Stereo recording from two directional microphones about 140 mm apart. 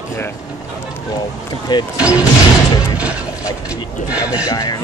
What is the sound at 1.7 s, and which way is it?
Speech, 30° left (ahead or behind).